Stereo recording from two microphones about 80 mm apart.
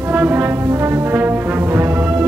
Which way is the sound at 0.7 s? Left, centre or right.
Right.